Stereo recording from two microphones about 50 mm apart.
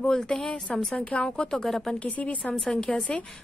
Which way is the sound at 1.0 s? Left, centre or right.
Left.